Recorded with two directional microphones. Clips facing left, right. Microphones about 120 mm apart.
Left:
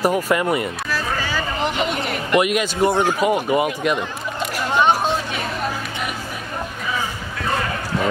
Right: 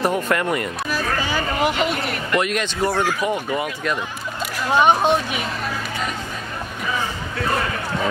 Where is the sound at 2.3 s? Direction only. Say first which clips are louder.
Left 4 dB; 10° left (ahead or behind).